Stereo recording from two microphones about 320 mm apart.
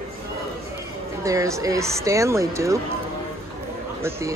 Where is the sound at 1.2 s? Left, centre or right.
Centre.